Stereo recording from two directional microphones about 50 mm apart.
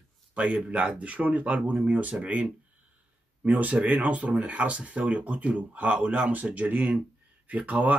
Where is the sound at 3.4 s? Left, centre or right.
Right.